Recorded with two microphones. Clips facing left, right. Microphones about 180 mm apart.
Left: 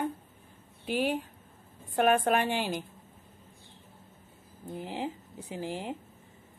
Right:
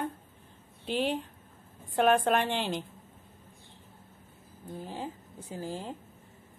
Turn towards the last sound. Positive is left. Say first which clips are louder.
# left 2 dB
turn(degrees=15)  # may be behind; listen again after turning